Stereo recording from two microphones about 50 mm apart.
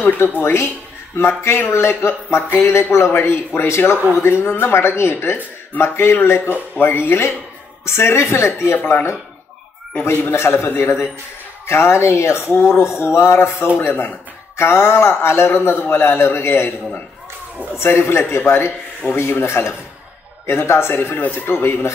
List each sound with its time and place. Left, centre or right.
0.4 s a man's voice: left
6.8 s a man's voice: left
8.7 s speech: left
10.3 s a man's voice: left
17.7 s a man's voice: left
19.4 s speech: left
21.2 s speech: left
21.5 s a man's voice: left